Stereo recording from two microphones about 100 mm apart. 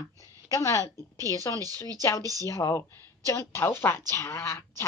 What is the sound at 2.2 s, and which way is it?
Speech, 35° right (ahead or behind).